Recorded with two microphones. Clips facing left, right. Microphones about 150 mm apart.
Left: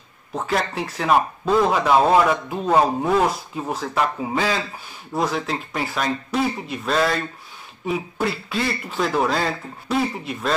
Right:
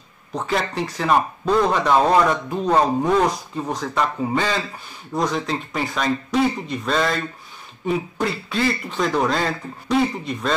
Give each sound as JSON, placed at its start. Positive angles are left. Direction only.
{"t": 0.3, "sound": "speech", "side_deg": 0}